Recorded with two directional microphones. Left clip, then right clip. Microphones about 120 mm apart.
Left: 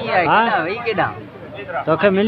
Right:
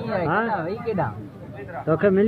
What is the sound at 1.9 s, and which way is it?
Speech, 5° left (ahead or behind).